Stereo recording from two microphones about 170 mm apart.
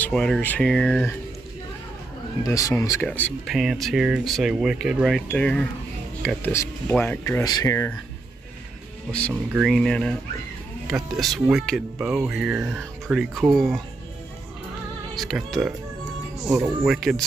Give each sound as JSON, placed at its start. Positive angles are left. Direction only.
{"t": 0.0, "sound": "speech", "side_deg": 5}
{"t": 2.4, "sound": "speech", "side_deg": 20}
{"t": 9.3, "sound": "speech", "side_deg": -10}
{"t": 9.7, "sound": "speech", "side_deg": 5}
{"t": 15.1, "sound": "speech", "side_deg": 0}
{"t": 16.8, "sound": "speech", "side_deg": -5}